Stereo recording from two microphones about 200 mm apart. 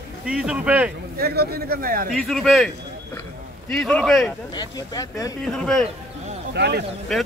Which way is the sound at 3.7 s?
Centre (ahead or behind).